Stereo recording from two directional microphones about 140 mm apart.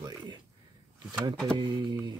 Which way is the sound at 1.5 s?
30° right (ahead or behind).